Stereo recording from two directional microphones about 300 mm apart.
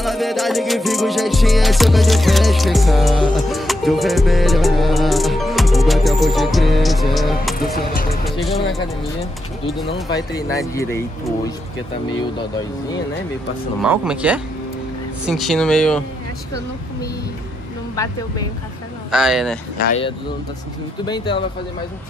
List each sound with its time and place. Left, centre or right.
0.0 s music: centre
7.5 s speech: left
8.4 s music: centre
10.0 s speech: centre
13.8 s music: centre
19.0 s music: centre